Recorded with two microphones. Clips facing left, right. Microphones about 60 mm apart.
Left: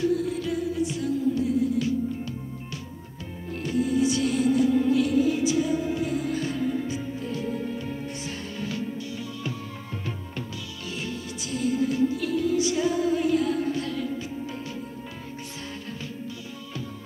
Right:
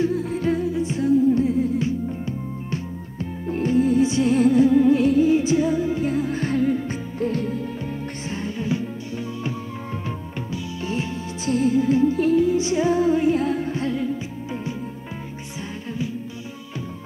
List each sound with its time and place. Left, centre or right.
0.0 s music: right
8.3 s music: right
10.5 s music: right